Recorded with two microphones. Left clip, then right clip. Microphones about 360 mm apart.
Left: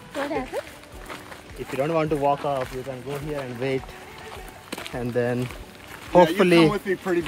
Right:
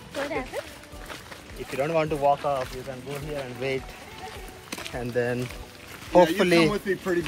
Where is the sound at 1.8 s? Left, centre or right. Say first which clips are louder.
Left 1 dB; left.